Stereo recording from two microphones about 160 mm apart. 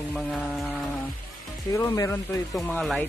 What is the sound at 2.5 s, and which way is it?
Music, 5° left (ahead or behind).